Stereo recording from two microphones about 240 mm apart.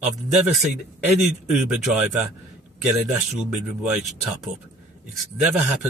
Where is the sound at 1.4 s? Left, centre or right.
Centre.